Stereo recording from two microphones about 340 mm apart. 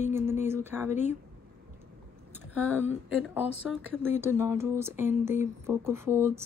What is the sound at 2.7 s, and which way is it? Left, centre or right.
Speech, centre.